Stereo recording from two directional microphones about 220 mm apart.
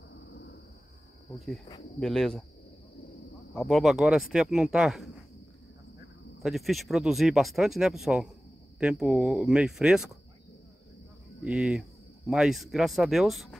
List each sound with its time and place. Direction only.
0.1 s thunder: 55° left (ahead or behind)
2.0 s speech: centre (ahead or behind)
3.5 s speech: centre (ahead or behind)
6.4 s speech: centre (ahead or behind)
11.4 s speech: centre (ahead or behind)